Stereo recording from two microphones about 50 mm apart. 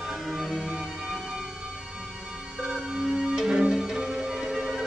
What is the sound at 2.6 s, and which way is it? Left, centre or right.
Music, centre.